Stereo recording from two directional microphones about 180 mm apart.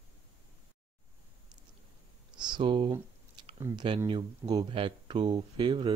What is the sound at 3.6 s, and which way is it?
Speech, 25° right (ahead or behind).